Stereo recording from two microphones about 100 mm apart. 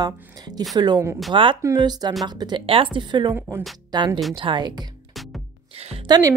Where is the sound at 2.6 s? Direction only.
65° right (ahead or behind).